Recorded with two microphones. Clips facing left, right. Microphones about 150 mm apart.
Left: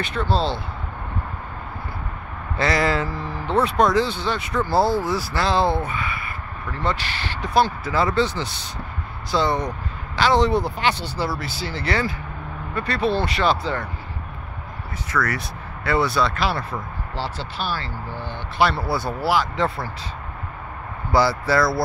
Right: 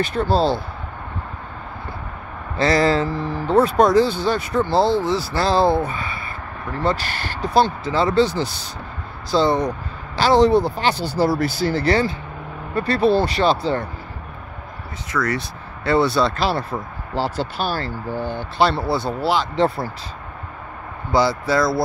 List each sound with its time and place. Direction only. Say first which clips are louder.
0.0 s speech: right 4 dB; 40° right (ahead or behind)
2.6 s speech: right 4 dB; 30° right (ahead or behind)
4.6 s speech: right 1 dB; 25° right (ahead or behind); by 7.3 s 45° right (ahead or behind)
7.5 s speech: right 2 dB; 25° right (ahead or behind)
9.3 s speech: right 4 dB; 30° right (ahead or behind)
15.0 s speech: right 2 dB; 20° right (ahead or behind)
17.1 s speech: right 7 dB; 45° right (ahead or behind)
18.6 s speech: right 2 dB; 25° right (ahead or behind)
21.1 s speech: right 1 dB; 20° right (ahead or behind)